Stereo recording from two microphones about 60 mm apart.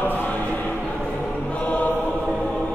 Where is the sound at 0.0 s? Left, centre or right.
Left.